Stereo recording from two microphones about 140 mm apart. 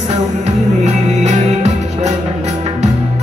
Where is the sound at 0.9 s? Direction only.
50° right (ahead or behind).